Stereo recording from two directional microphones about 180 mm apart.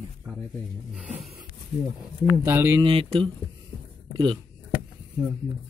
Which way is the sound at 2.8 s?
30° right (ahead or behind).